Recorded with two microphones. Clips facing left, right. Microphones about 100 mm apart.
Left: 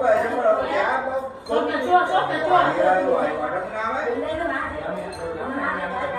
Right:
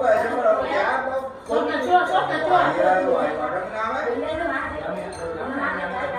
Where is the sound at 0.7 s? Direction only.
20° right (ahead or behind).